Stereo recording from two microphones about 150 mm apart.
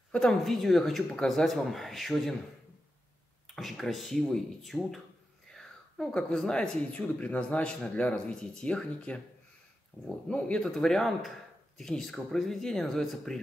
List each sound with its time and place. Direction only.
0.1 s speech: 5° left (ahead or behind)
3.4 s speech: centre (ahead or behind)